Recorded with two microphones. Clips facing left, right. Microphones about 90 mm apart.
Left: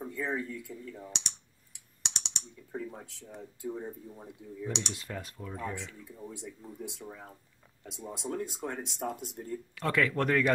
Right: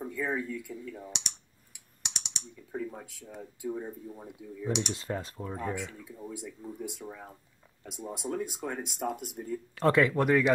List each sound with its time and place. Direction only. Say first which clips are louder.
0.0 s speech: right 2 dB; 5° right (ahead or behind)
4.9 s speech: right 5 dB; 30° right (ahead or behind)
6.0 s speech: right 2 dB; 5° right (ahead or behind)
9.8 s speech: right 5 dB; 35° right (ahead or behind)
10.0 s speech: right 3 dB; 10° right (ahead or behind)